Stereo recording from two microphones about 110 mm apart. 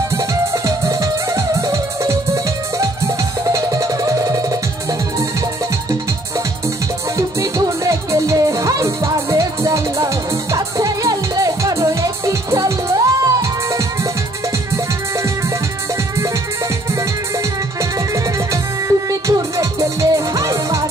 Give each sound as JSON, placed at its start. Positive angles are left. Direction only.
{"t": 0.1, "sound": "music", "side_deg": -30}
{"t": 7.2, "sound": "music", "side_deg": -30}
{"t": 17.9, "sound": "music", "side_deg": -30}